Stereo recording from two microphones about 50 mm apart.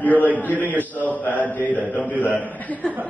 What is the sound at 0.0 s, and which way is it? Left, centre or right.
Speech, left.